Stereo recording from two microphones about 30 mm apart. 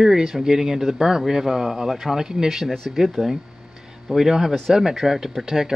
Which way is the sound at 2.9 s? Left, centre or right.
Centre.